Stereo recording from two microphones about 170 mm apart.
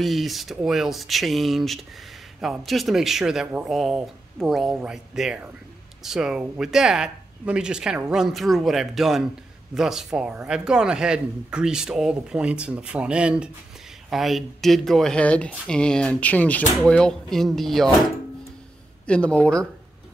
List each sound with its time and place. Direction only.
0.0 s speech: centre (ahead or behind)
19.0 s speech: 5° left (ahead or behind)